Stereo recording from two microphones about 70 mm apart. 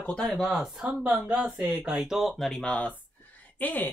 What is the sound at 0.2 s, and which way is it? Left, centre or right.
Speech, centre.